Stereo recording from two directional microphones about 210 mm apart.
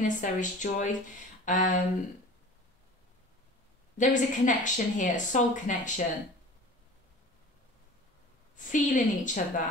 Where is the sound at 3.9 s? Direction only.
35° left (ahead or behind).